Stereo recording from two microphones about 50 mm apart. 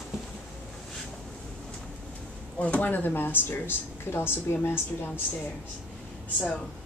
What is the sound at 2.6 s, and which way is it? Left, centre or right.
Speech, left.